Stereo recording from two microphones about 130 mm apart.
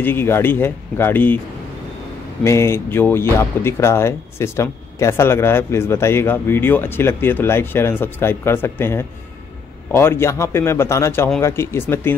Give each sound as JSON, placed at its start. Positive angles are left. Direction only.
{"t": 0.0, "sound": "speech", "side_deg": 15}
{"t": 2.4, "sound": "speech", "side_deg": 20}